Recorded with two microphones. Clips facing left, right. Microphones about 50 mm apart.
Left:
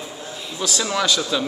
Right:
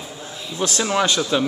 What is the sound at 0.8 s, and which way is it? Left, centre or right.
Speech, right.